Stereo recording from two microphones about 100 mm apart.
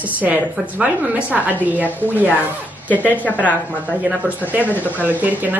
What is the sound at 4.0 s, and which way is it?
A woman's voice, 15° right (ahead or behind).